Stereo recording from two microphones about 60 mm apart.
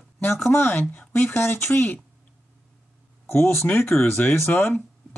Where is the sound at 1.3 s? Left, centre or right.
Left.